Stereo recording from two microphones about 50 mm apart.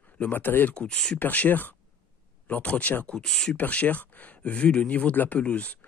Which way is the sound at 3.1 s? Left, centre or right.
Centre.